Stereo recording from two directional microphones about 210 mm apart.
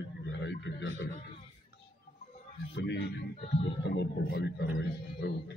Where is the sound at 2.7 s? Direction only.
55° left (ahead or behind).